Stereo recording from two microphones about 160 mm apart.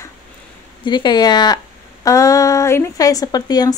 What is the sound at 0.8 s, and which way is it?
A woman's voice, 30° left (ahead or behind).